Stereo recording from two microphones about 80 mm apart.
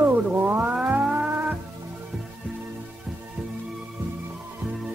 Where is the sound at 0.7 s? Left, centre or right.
Centre.